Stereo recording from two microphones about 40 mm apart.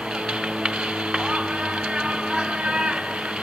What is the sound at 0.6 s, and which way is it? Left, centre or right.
Music, right.